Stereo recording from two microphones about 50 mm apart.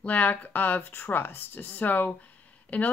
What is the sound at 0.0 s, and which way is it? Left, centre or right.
Speech, left.